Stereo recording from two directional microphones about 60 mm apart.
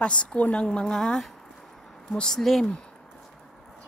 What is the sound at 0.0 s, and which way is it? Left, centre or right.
A woman's voice, centre.